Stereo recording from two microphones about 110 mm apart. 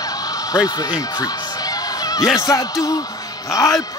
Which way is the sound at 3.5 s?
30° left (ahead or behind).